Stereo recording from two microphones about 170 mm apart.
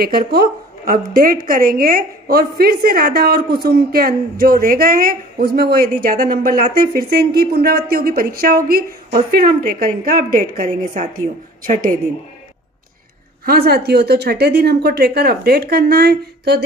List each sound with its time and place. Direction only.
0.0 s a woman's voice: 65° right (ahead or behind)
13.5 s speech: 65° right (ahead or behind)